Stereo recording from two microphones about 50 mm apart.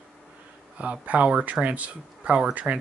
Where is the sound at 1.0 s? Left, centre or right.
Right.